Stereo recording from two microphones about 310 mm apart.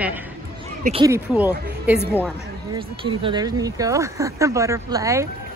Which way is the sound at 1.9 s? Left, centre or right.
Centre.